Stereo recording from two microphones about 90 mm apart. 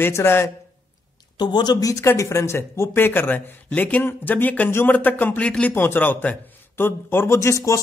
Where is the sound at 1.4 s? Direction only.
55° left (ahead or behind).